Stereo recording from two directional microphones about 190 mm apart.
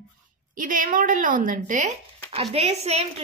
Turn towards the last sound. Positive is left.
turn(degrees=-35)  # may be behind; listen again after turning